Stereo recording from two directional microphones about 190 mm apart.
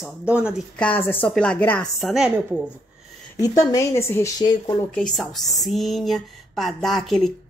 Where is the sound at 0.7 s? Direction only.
10° left (ahead or behind).